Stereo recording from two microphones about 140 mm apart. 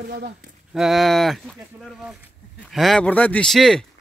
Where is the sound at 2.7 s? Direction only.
Centre (ahead or behind).